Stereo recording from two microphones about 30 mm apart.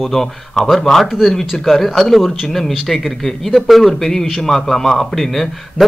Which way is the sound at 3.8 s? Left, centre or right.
Centre.